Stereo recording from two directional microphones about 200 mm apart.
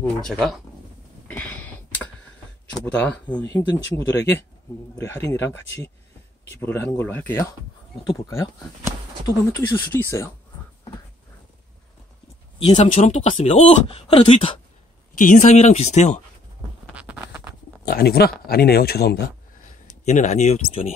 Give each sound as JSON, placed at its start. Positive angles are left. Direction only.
{"t": 0.0, "sound": "speech", "side_deg": 5}
{"t": 1.2, "sound": "a sound", "side_deg": 10}
{"t": 2.7, "sound": "speech", "side_deg": 10}
{"t": 12.5, "sound": "speech", "side_deg": 30}
{"t": 15.1, "sound": "speech", "side_deg": 40}
{"t": 16.8, "sound": "a sound", "side_deg": -5}
{"t": 17.8, "sound": "speech", "side_deg": 50}
{"t": 20.1, "sound": "speech", "side_deg": 35}